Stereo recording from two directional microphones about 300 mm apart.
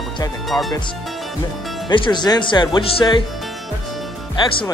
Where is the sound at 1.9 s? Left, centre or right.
Centre.